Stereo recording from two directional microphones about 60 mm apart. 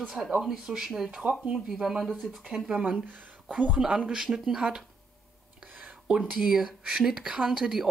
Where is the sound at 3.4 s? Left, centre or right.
Right.